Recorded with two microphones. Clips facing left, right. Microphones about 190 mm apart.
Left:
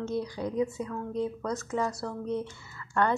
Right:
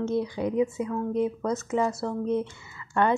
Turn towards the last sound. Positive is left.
turn(degrees=-20)  # may be behind; listen again after turning